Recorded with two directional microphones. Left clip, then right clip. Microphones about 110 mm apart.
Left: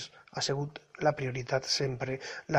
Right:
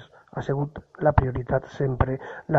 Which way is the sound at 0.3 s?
5° right (ahead or behind).